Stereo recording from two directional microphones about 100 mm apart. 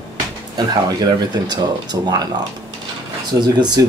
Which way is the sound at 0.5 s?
40° right (ahead or behind).